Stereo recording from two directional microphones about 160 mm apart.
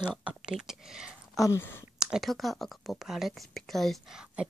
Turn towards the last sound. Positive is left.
turn(degrees=-5)  # may be behind; listen again after turning